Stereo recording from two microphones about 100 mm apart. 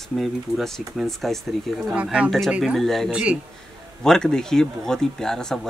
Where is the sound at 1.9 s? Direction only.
10° right (ahead or behind).